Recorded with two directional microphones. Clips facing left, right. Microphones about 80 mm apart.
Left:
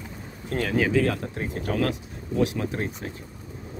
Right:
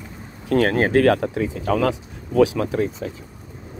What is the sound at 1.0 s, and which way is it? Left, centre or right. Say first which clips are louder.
Speech: right 9 dB; right.